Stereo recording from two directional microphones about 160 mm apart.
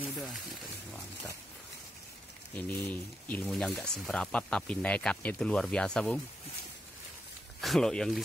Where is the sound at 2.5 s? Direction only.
10° left (ahead or behind).